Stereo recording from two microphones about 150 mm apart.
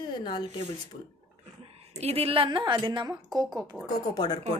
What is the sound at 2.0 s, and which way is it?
A woman's voice, 40° right (ahead or behind).